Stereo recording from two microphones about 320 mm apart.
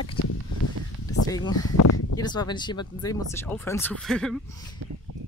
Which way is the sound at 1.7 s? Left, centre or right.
Left.